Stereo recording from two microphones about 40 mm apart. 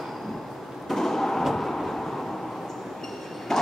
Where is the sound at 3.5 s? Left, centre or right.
Centre.